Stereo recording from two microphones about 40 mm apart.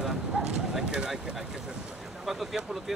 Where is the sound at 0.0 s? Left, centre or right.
Centre.